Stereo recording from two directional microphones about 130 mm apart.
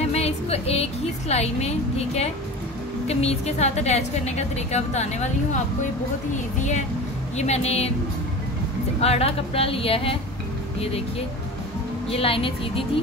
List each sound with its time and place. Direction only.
0.0 s music: 55° left (ahead or behind)
1.3 s a woman's voice: 55° left (ahead or behind)
7.3 s a woman's voice: 55° left (ahead or behind)
9.0 s speech: 50° left (ahead or behind)